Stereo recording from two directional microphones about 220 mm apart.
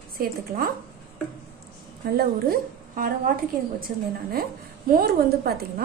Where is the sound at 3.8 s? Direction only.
40° right (ahead or behind).